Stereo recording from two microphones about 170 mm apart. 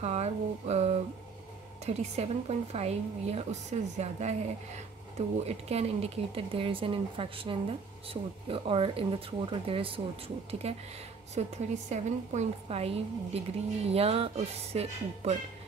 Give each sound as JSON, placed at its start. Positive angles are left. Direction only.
{"t": 0.0, "sound": "speech", "side_deg": -40}